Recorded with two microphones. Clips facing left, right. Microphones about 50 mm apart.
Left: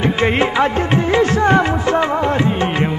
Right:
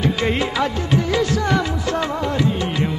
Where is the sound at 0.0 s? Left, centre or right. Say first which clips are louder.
Left 4 dB; left.